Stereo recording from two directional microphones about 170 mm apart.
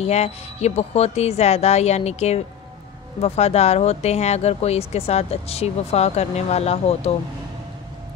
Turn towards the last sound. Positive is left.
turn(degrees=35)  # may be behind; listen again after turning